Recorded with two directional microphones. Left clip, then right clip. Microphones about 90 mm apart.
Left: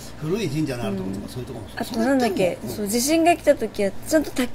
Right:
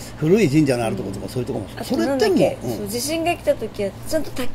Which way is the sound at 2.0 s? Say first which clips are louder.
Right 3 dB; 15° left (ahead or behind).